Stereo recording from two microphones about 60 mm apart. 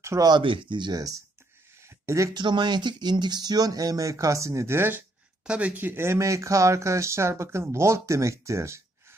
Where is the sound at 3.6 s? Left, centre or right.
Right.